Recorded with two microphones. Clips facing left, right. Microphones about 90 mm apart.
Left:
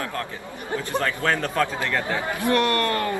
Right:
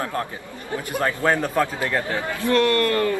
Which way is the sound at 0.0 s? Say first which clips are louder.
Right 3 dB; 25° right (ahead or behind).